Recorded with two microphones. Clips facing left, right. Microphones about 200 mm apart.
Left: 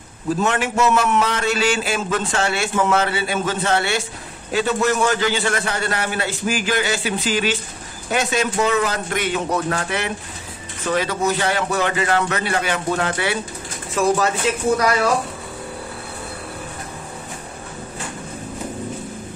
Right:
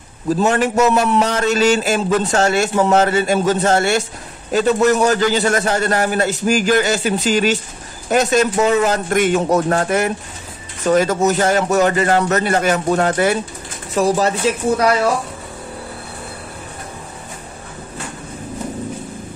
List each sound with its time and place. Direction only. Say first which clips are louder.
0.4 s a man's voice: right 5 dB; 40° right (ahead or behind)